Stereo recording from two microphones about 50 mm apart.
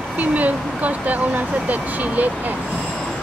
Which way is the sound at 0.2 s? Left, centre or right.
Right.